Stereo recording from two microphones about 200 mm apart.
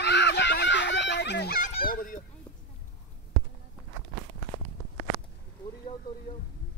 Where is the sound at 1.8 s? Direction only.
45° left (ahead or behind).